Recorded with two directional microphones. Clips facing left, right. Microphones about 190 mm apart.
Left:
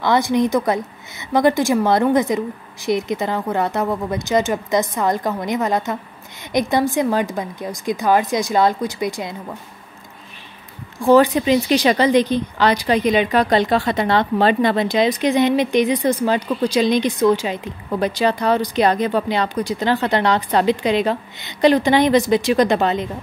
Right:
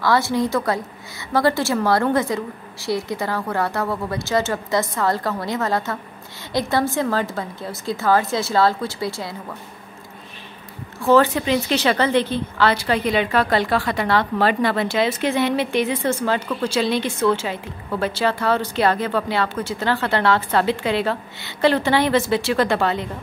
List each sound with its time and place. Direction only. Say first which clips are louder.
0.0 s a woman's voice: left 3 dB; 20° left (ahead or behind)
11.0 s a woman's voice: left 3 dB; 15° left (ahead or behind)